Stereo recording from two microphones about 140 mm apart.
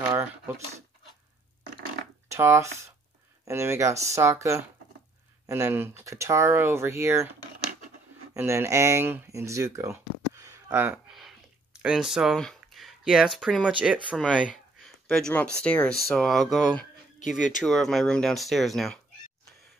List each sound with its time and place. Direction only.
0.0 s a sound: 20° right (ahead or behind)
2.2 s speech: 20° right (ahead or behind)
8.4 s speech: 20° right (ahead or behind)
11.1 s a sound: centre (ahead or behind)
11.8 s speech: 5° right (ahead or behind)
13.7 s speech: 10° right (ahead or behind)
14.1 s speech: 5° left (ahead or behind)